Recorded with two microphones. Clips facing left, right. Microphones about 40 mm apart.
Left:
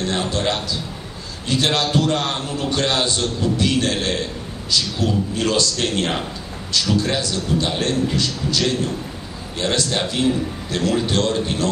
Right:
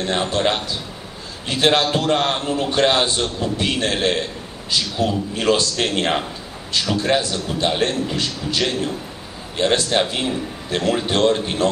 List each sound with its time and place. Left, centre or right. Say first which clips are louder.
0.0 s a man's voice: right 2 dB; centre